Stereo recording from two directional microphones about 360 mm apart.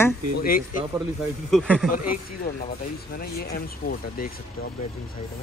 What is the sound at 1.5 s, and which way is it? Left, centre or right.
Speech, centre.